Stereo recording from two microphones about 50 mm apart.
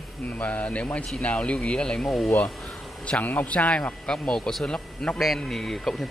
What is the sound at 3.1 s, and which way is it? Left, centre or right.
Speech, left.